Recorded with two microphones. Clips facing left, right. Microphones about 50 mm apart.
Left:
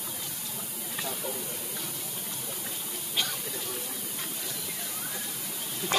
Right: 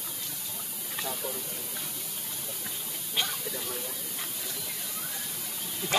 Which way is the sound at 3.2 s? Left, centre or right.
Centre.